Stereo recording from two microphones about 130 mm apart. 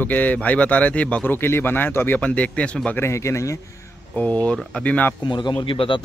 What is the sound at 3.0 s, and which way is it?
Speech, 20° left (ahead or behind).